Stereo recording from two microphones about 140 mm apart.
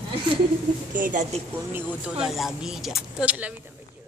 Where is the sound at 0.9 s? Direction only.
70° right (ahead or behind).